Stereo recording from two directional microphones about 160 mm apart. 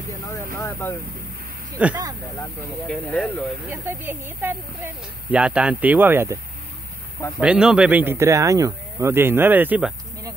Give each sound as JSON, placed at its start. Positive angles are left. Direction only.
{"t": 0.6, "sound": "speech", "side_deg": 15}
{"t": 1.8, "sound": "speech", "side_deg": -10}
{"t": 2.9, "sound": "speech", "side_deg": 5}
{"t": 3.7, "sound": "speech", "side_deg": -15}
{"t": 7.3, "sound": "speech", "side_deg": -5}